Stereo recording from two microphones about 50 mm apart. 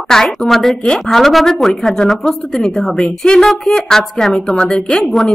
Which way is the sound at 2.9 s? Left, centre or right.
Left.